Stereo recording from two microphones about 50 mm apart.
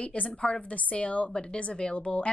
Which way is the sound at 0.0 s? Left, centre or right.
Left.